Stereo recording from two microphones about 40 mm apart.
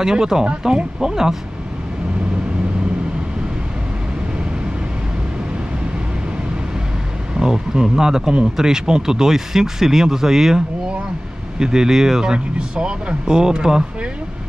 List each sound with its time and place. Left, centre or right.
0.0 s speech: centre
7.3 s speech: centre
11.6 s speech: centre
12.5 s speech: right
13.3 s speech: centre